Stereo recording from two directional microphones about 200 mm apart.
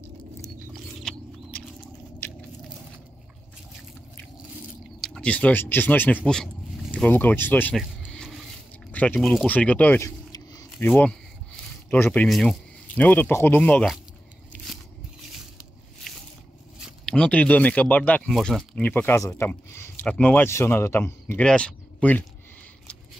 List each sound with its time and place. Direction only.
2.2 s biting: 10° left (ahead or behind)
5.0 s speech: 5° left (ahead or behind)
7.7 s a sound: centre (ahead or behind); by 10.9 s 15° left (ahead or behind)
10.9 s speech: 5° left (ahead or behind)
16.1 s a sound: centre (ahead or behind)
16.7 s speech: 5° left (ahead or behind)